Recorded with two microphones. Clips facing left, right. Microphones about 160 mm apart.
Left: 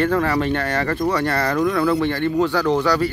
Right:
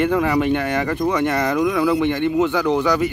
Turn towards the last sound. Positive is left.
turn(degrees=-15)  # may be behind; listen again after turning